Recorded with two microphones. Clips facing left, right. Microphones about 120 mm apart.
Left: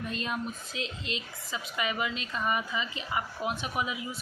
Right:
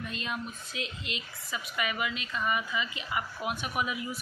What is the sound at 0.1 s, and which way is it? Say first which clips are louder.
A woman's voice: left 3 dB; 35° left (ahead or behind).